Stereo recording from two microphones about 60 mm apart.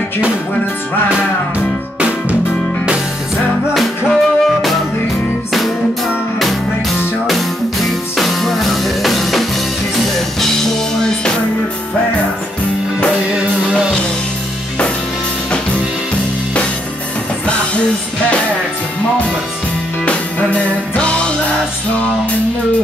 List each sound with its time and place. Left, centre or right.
2.0 s music: right
3.7 s music: centre
7.2 s music: centre
13.4 s music: centre
20.1 s music: left